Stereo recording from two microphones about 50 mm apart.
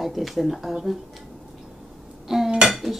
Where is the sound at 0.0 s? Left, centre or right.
Centre.